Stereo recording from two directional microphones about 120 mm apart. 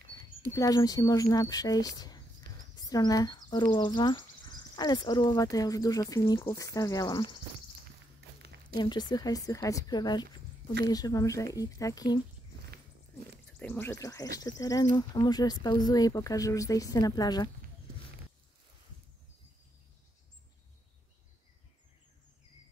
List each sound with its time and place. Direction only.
0.5 s speech: 30° left (ahead or behind)
8.7 s speech: 35° left (ahead or behind)
13.6 s speech: 15° left (ahead or behind)
13.9 s speech: 30° left (ahead or behind)